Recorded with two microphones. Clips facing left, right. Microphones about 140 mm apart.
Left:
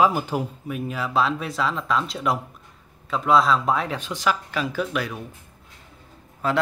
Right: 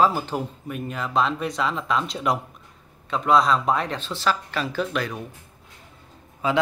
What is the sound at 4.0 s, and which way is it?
A man's voice, 15° left (ahead or behind).